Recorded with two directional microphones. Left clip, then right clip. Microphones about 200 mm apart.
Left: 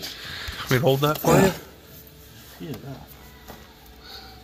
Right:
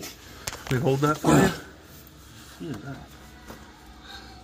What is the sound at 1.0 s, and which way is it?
Speech, 10° left (ahead or behind).